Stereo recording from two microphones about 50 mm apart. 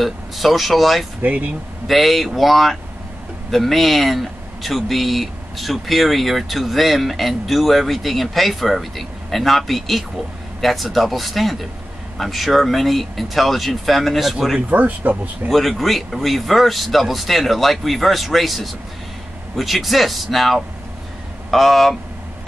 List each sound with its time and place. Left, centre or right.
0.0 s speech: centre
1.2 s speech: right
1.9 s speech: centre
14.7 s speech: right
15.4 s speech: centre